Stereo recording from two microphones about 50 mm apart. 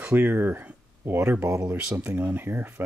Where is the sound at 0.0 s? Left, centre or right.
Right.